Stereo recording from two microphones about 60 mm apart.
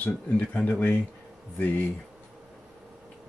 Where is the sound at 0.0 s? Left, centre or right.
Left.